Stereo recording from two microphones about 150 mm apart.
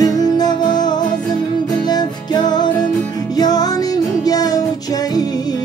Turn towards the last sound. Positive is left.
turn(degrees=25)  # may be behind; listen again after turning